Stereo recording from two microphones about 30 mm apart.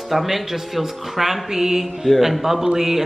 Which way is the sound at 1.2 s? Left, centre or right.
Centre.